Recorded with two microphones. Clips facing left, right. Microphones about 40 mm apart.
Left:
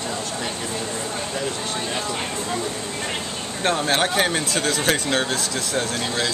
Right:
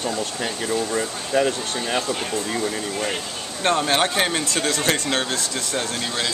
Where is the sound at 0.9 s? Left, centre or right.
Right.